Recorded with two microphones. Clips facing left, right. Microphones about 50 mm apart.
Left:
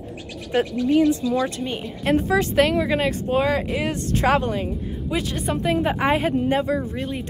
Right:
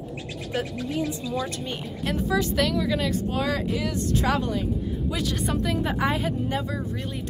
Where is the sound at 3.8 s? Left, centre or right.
Left.